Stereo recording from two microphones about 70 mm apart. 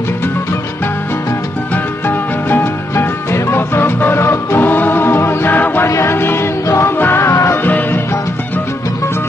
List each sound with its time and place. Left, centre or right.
2.0 s music: left
5.9 s music: left
6.1 s music: left
7.6 s music: left